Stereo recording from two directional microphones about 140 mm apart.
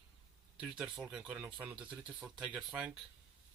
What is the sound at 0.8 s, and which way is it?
Speech, 5° right (ahead or behind).